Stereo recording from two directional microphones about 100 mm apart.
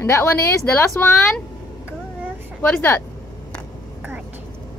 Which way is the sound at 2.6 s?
20° left (ahead or behind).